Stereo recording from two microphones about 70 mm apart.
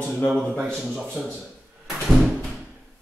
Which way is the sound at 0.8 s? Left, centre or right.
Centre.